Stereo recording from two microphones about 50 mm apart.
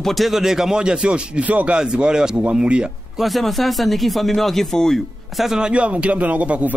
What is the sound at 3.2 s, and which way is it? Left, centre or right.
Speech, centre.